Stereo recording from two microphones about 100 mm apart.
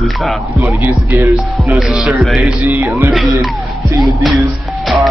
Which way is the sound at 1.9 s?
5° right (ahead or behind).